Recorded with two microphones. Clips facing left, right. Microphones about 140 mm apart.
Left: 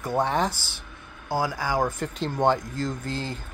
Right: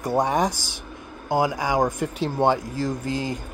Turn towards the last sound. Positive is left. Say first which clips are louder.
# right 5 dB
turn(degrees=-10)  # may be behind; listen again after turning